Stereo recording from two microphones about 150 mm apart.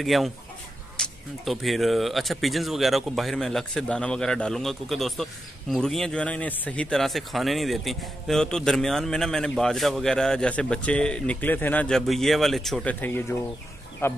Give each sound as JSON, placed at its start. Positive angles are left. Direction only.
{"t": 0.0, "sound": "speech", "side_deg": 0}
{"t": 14.0, "sound": "speech", "side_deg": 15}